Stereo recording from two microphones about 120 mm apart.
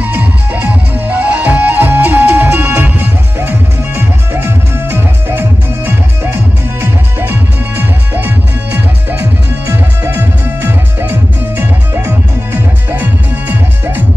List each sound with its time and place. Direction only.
0.0 s music: 15° right (ahead or behind)
6.8 s music: 15° right (ahead or behind)
10.6 s music: 15° right (ahead or behind)